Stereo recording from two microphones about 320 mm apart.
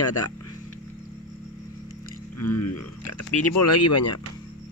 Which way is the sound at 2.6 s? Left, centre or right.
Left.